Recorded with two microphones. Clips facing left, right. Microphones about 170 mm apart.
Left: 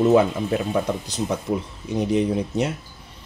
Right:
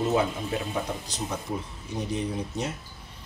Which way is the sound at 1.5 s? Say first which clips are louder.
Left 8 dB; 90° left.